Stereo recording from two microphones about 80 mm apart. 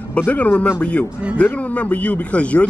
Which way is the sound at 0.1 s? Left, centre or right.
Centre.